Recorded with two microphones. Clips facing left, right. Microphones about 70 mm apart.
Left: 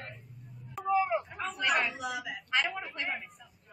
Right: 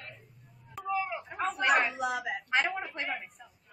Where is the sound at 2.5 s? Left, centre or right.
Right.